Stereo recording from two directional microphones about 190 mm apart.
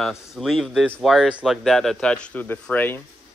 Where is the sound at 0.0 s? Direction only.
Centre (ahead or behind).